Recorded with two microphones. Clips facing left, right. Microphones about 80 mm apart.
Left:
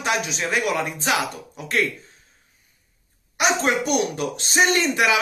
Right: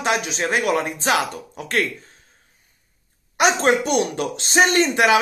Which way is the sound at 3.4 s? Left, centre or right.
Right.